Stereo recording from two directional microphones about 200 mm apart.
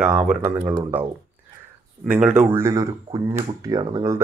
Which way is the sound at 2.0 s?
5° right (ahead or behind).